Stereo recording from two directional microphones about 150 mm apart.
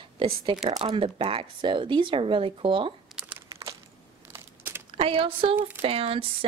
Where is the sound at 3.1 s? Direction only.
5° right (ahead or behind).